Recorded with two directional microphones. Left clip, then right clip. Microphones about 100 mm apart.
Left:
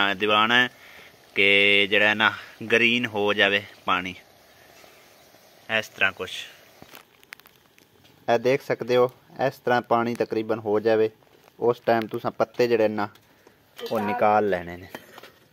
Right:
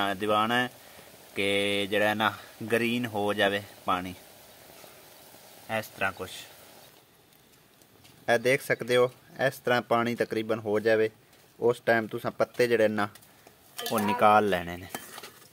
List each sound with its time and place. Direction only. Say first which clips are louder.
0.0 s speech: left 6 dB; centre (ahead or behind)
5.7 s speech: left 7 dB; centre (ahead or behind)
8.3 s speech: left 3 dB; 15° left (ahead or behind)
13.9 s speech: left 1 dB; 5° right (ahead or behind)